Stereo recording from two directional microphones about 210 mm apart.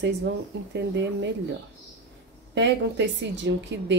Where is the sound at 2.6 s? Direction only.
55° right (ahead or behind).